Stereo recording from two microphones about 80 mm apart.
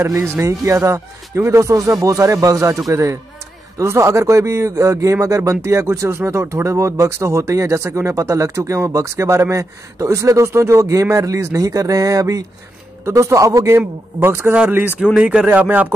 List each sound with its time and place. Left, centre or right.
0.0 s a man's voice: right